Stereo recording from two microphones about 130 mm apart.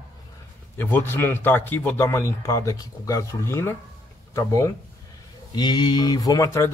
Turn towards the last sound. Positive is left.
turn(degrees=25)  # may be behind; listen again after turning